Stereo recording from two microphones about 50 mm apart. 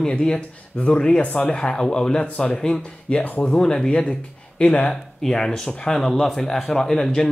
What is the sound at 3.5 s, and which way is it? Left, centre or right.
Speech, centre.